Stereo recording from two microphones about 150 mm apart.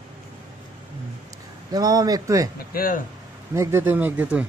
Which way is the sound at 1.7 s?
25° right (ahead or behind).